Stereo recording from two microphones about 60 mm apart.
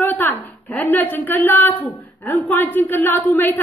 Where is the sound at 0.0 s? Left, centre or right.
Left.